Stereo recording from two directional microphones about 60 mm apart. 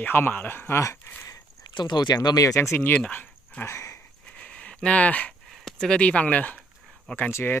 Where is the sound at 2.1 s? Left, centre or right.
Left.